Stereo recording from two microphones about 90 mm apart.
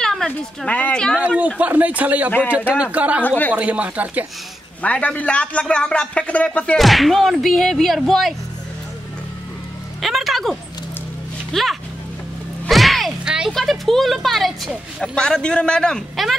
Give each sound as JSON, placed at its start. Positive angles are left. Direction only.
{"t": 0.0, "sound": "speech", "side_deg": 5}
{"t": 0.7, "sound": "speech", "side_deg": 15}
{"t": 1.2, "sound": "speech", "side_deg": -15}
{"t": 3.3, "sound": "speech", "side_deg": 20}
{"t": 3.5, "sound": "speech", "side_deg": -15}
{"t": 4.8, "sound": "speech", "side_deg": 15}
{"t": 6.8, "sound": "speech", "side_deg": 0}
{"t": 10.0, "sound": "music", "side_deg": 0}
{"t": 11.5, "sound": "speech", "side_deg": 0}
{"t": 12.6, "sound": "music", "side_deg": 0}
{"t": 13.5, "sound": "speech", "side_deg": 5}
{"t": 15.1, "sound": "speech", "side_deg": 10}